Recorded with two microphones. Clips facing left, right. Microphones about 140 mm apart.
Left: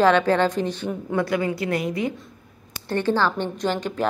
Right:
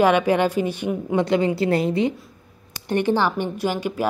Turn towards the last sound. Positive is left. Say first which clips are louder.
# right 1 dB
turn(degrees=-10)  # may be behind; listen again after turning